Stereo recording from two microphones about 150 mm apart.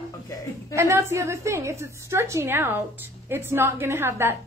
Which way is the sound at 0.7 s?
20° right (ahead or behind).